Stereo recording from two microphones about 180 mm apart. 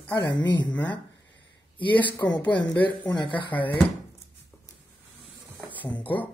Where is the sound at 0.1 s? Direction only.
25° left (ahead or behind).